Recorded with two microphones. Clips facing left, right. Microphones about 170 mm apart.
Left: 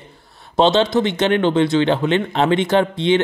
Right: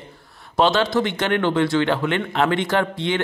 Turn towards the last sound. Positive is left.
turn(degrees=20)  # may be behind; listen again after turning